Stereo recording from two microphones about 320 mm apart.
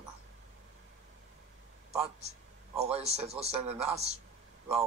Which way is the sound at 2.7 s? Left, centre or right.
Centre.